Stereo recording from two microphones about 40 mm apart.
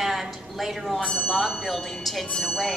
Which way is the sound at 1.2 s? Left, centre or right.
Centre.